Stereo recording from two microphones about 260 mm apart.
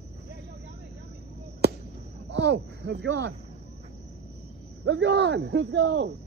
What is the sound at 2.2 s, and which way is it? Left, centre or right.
Speech, right.